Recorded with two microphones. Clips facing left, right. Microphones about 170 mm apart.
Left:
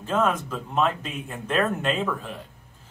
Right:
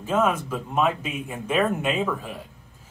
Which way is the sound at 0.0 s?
5° right (ahead or behind).